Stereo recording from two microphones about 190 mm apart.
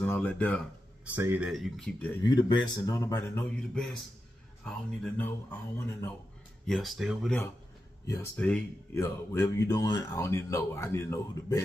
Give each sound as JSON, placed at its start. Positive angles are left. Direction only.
{"t": 0.0, "sound": "speech", "side_deg": 10}
{"t": 1.0, "sound": "speech", "side_deg": -10}
{"t": 2.2, "sound": "speech", "side_deg": 20}
{"t": 3.7, "sound": "speech", "side_deg": 0}
{"t": 6.6, "sound": "speech", "side_deg": 0}
{"t": 8.1, "sound": "speech", "side_deg": 10}